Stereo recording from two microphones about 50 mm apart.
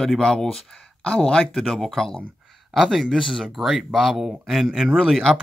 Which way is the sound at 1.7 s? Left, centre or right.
Centre.